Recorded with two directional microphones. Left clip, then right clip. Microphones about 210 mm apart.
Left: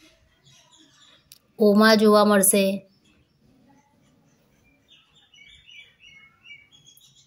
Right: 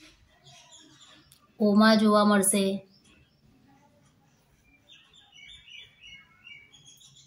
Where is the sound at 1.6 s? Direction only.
35° left (ahead or behind).